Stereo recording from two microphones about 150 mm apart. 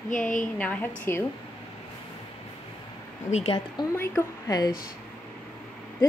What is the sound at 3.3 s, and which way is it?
Speech, 45° left (ahead or behind).